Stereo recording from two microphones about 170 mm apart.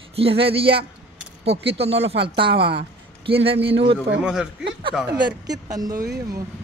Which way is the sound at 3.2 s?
35° right (ahead or behind).